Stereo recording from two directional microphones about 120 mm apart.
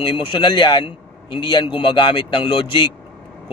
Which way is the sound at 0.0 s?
45° left (ahead or behind).